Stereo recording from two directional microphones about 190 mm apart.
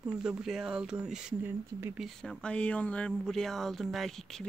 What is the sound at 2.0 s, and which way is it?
Speech, 5° left (ahead or behind).